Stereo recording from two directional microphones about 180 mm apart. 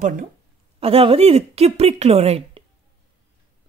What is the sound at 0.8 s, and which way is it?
A woman's voice, 30° right (ahead or behind).